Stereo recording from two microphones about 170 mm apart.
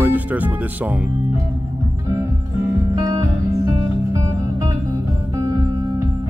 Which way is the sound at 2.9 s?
20° right (ahead or behind).